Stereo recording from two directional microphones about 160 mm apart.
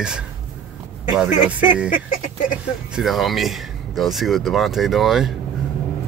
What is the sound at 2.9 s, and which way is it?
Speech, centre (ahead or behind).